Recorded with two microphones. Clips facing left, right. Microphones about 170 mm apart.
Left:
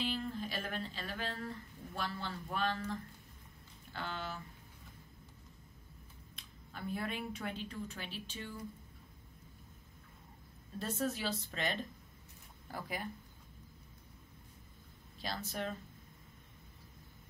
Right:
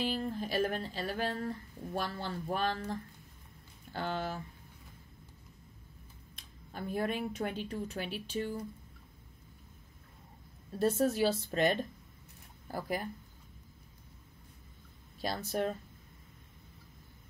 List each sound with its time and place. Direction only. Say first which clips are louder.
0.0 s speech: right 4 dB; 40° right (ahead or behind)
6.3 s speech: right 6 dB; 45° right (ahead or behind)
10.8 s speech: right 9 dB; 45° right (ahead or behind)
15.2 s speech: right 7 dB; 45° right (ahead or behind)